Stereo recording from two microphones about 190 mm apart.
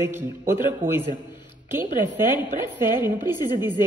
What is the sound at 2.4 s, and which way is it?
Speech, 10° right (ahead or behind).